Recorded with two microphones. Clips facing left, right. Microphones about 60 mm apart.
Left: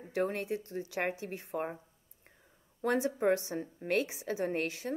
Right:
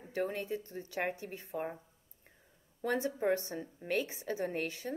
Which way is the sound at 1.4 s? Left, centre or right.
Left.